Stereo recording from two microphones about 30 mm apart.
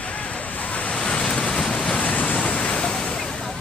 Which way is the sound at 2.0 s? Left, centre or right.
Left.